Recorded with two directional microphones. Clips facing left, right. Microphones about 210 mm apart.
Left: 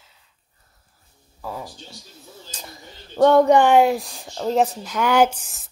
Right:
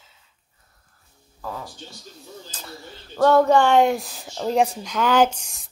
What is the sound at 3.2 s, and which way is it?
Speech, 20° left (ahead or behind).